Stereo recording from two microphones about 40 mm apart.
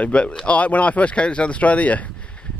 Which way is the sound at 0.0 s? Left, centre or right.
Left.